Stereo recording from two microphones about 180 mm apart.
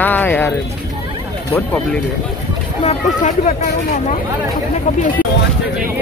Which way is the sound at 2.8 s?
40° left (ahead or behind).